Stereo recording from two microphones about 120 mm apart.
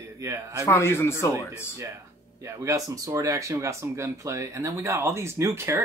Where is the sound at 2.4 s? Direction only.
25° right (ahead or behind).